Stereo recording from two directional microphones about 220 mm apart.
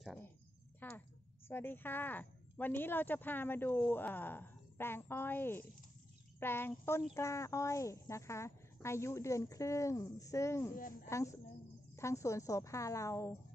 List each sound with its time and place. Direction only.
0.7 s a woman's voice: 10° left (ahead or behind)